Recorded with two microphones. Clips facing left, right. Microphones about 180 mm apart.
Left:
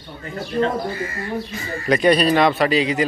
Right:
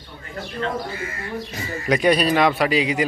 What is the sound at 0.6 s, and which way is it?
Speech, 30° left (ahead or behind).